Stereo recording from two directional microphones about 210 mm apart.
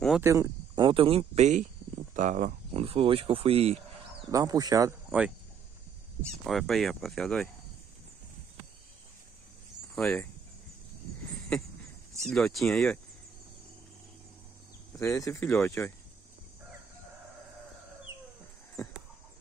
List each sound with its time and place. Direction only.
0.2 s speech: 15° right (ahead or behind)
4.3 s speech: 15° right (ahead or behind)
6.4 s speech: centre (ahead or behind)
9.9 s speech: 5° left (ahead or behind)
12.2 s speech: centre (ahead or behind)
15.0 s speech: 15° left (ahead or behind)